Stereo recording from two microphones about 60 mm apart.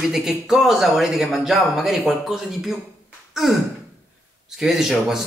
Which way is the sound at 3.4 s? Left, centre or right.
Centre.